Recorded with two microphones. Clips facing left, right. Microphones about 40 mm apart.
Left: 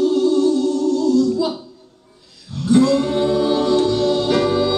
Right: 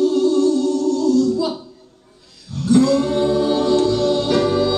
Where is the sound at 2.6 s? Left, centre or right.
Centre.